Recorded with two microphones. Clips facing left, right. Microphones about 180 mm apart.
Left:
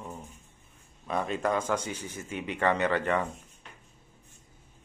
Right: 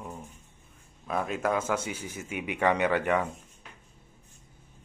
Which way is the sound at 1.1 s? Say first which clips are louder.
Even; 5° right (ahead or behind).